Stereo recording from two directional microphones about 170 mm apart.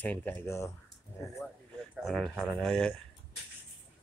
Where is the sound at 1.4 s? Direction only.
5° right (ahead or behind).